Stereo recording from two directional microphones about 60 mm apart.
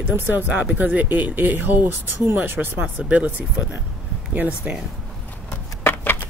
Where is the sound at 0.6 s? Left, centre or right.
Right.